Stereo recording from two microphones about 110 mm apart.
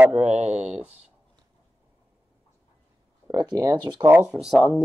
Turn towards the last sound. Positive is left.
turn(degrees=-5)  # may be behind; listen again after turning